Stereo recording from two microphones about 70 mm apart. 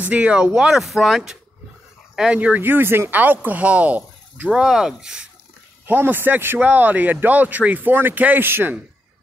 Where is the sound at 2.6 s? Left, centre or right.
Right.